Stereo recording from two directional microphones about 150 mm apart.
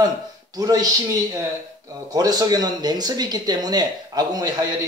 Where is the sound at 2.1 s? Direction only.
25° right (ahead or behind).